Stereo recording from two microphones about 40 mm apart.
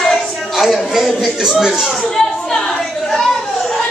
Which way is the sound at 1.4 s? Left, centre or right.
Centre.